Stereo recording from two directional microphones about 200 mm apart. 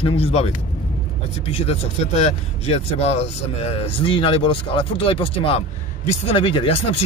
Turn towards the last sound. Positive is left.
turn(degrees=25)  # may be behind; listen again after turning